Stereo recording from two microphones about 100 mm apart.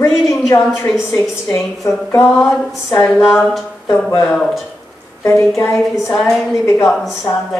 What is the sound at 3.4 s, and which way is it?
A woman's voice, 5° left (ahead or behind).